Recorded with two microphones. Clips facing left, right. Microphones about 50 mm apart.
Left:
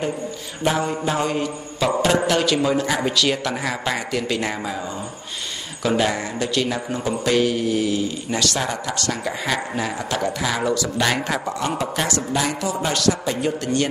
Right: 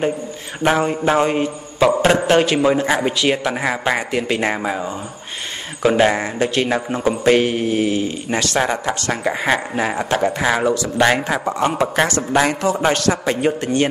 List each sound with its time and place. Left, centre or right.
0.7 s mantra: right
5.8 s speech: right
13.5 s mantra: right